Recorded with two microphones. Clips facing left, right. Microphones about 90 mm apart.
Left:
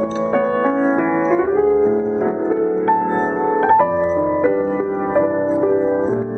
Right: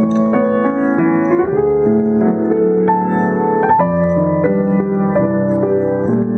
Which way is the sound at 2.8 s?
5° right (ahead or behind).